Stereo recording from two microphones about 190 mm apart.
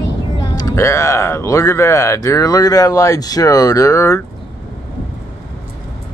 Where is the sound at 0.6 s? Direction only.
15° left (ahead or behind).